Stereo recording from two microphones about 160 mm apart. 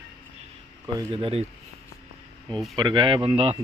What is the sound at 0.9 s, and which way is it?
Speech, 35° right (ahead or behind).